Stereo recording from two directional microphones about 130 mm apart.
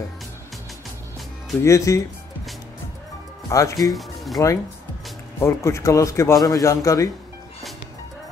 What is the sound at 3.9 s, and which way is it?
Speech, centre (ahead or behind).